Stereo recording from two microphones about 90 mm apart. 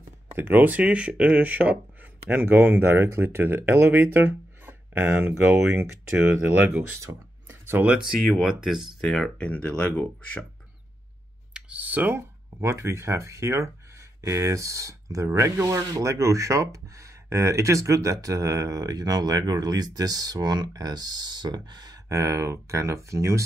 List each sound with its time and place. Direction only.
0.4 s speech: 25° right (ahead or behind)
7.0 s a sound: 25° right (ahead or behind)
8.2 s speech: 5° right (ahead or behind)
9.0 s speech: 10° left (ahead or behind)
11.5 s computer keyboard: 15° right (ahead or behind)
12.5 s speech: 30° right (ahead or behind)